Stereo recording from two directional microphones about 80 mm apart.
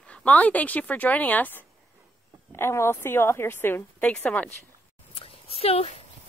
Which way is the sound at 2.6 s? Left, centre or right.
Left.